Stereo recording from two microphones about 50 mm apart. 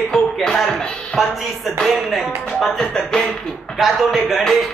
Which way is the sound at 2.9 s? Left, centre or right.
Centre.